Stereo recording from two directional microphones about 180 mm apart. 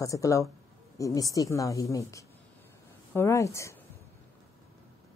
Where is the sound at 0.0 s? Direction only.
20° left (ahead or behind).